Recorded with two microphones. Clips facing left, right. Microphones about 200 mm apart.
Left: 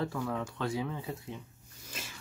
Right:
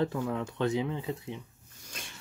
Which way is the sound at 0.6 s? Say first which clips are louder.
Right 5 dB; 20° right (ahead or behind).